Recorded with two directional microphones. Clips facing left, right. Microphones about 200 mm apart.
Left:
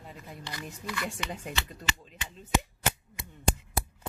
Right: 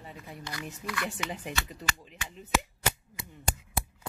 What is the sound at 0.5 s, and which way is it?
Speech, 5° left (ahead or behind).